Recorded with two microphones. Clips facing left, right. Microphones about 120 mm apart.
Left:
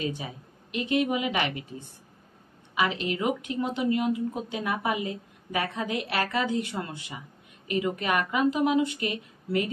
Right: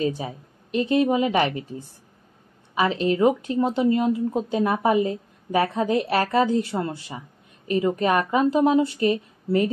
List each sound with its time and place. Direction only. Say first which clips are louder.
0.0 s speech: right 7 dB; 35° right (ahead or behind)